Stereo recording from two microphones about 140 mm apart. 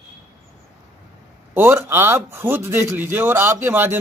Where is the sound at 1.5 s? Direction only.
15° right (ahead or behind).